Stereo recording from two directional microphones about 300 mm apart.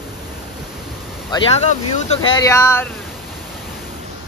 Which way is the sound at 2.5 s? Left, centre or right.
Centre.